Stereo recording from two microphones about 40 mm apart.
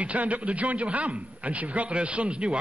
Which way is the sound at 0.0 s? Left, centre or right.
Right.